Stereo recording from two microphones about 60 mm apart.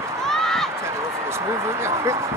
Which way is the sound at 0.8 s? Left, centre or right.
Right.